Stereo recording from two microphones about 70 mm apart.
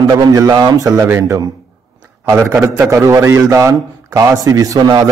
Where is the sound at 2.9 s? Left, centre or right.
Right.